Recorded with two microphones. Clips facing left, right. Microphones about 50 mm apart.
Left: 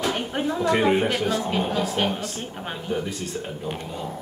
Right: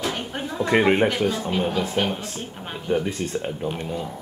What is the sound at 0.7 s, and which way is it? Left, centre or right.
Speech, right.